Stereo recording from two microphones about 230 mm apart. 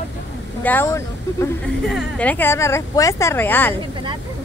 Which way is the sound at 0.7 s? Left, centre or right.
Centre.